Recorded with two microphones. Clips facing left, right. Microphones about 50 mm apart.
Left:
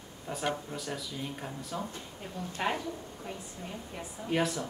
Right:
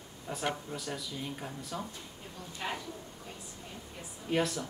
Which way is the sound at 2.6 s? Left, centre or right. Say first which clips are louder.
Left 6 dB; left.